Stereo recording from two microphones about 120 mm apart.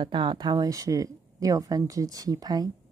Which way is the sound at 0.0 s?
40° right (ahead or behind).